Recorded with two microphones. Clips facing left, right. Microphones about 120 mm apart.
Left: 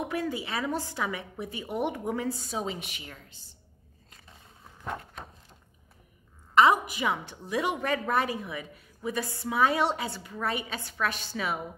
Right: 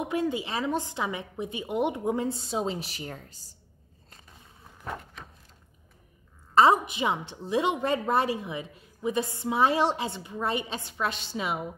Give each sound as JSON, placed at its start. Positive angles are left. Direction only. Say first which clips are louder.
{"t": 0.0, "sound": "a woman's voice", "louder": "right 3 dB", "side_deg": -20}
{"t": 6.5, "sound": "a woman's voice", "louder": "right 1 dB", "side_deg": -30}